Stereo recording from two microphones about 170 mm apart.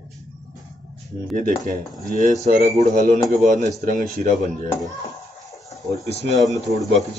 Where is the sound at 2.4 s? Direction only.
45° right (ahead or behind).